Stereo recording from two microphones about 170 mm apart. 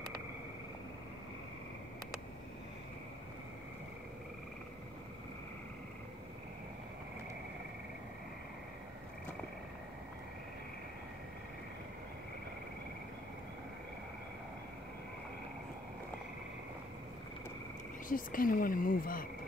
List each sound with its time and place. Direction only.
18.0 s speech: 55° left (ahead or behind)